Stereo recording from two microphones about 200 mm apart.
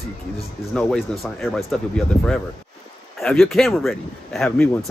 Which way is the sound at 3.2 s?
Centre (ahead or behind).